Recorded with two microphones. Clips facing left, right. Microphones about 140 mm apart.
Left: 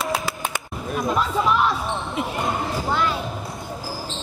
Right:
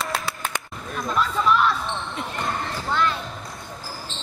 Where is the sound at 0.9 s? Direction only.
15° left (ahead or behind).